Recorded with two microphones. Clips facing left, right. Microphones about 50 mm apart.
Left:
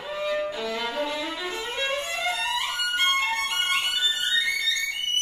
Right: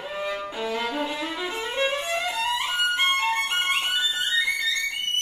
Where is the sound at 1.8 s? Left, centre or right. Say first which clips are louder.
Right 3 dB; centre.